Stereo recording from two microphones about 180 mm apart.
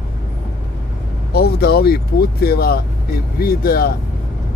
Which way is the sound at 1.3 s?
60° left (ahead or behind).